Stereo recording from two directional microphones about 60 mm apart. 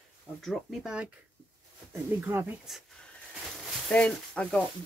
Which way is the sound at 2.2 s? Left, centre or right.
Right.